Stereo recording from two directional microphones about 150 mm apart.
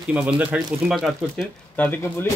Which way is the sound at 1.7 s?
10° left (ahead or behind).